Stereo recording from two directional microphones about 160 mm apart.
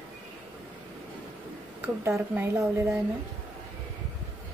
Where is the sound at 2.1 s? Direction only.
15° right (ahead or behind).